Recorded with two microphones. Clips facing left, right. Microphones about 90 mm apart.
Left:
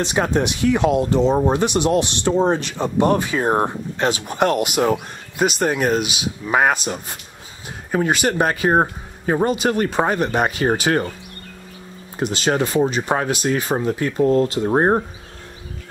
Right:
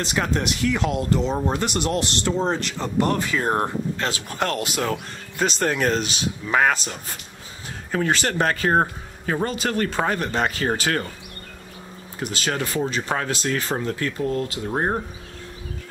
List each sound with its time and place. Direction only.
0.0 s speech: 20° left (ahead or behind)
12.2 s speech: 25° left (ahead or behind)
14.2 s speech: 35° left (ahead or behind)